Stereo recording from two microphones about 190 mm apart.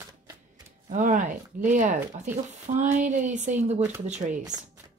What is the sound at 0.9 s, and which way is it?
Speech, 40° right (ahead or behind).